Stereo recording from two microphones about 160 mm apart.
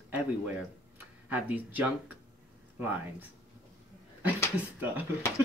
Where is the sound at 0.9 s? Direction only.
10° right (ahead or behind).